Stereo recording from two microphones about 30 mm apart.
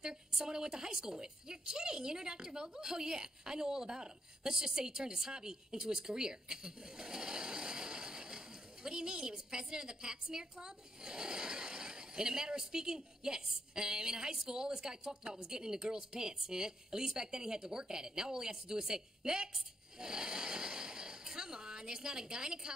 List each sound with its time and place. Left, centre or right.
0.0 s a woman's voice: right